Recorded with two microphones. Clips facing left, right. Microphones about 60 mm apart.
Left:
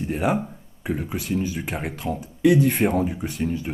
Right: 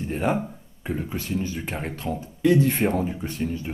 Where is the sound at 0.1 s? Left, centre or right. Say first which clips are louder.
Left 1 dB; centre.